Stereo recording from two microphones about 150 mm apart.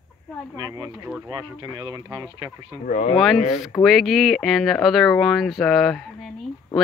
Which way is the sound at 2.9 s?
45° left (ahead or behind).